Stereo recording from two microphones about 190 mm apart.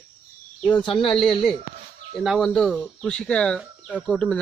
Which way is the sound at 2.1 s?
Centre (ahead or behind).